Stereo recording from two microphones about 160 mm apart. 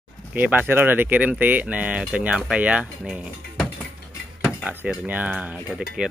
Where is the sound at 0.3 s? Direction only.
10° right (ahead or behind).